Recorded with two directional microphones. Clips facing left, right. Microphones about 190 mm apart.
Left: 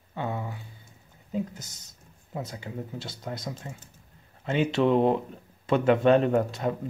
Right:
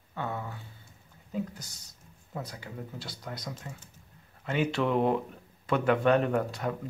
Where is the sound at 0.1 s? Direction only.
20° left (ahead or behind).